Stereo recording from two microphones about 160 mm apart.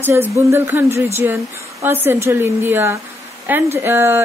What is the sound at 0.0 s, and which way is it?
A woman's voice, 15° right (ahead or behind).